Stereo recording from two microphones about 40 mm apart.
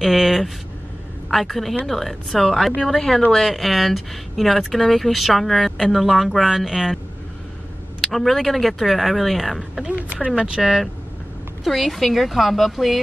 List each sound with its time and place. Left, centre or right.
0.0 s speech: centre
8.0 s speech: centre
9.8 s speech: right
10.6 s speech: centre